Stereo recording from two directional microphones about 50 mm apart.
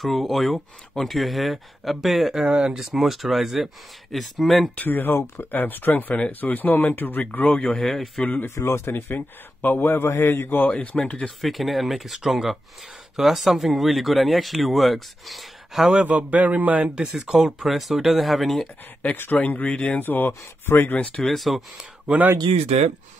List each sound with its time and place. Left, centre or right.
0.0 s speech: centre
4.7 s a man's voice: left
7.8 s a man's voice: centre
8.5 s speech: left
9.1 s a man's voice: left
11.0 s speech: centre
11.2 s speech: centre
15.9 s a man's voice: right
17.1 s speech: centre
19.3 s speech: left
20.0 s speech: left
21.2 s speech: centre
22.0 s speech: right